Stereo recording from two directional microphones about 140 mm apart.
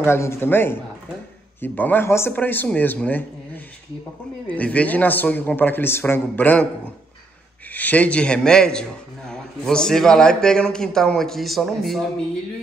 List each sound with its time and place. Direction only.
0.0 s a man's voice: 20° left (ahead or behind)
7.7 s a man's voice: 10° left (ahead or behind)